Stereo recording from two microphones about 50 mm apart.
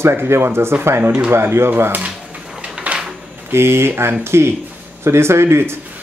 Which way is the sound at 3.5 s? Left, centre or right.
Right.